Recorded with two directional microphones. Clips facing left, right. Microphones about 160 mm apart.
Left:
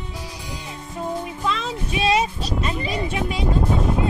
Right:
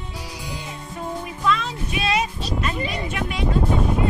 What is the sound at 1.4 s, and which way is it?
Music, 30° left (ahead or behind).